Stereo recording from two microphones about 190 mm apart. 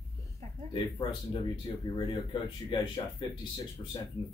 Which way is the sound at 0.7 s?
25° left (ahead or behind).